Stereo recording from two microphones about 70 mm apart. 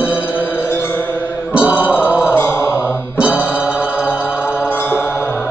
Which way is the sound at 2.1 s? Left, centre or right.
Centre.